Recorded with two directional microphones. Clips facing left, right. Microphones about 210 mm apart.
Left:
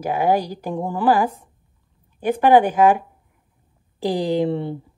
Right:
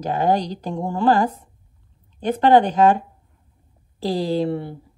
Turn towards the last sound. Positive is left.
turn(degrees=20)  # may be behind; listen again after turning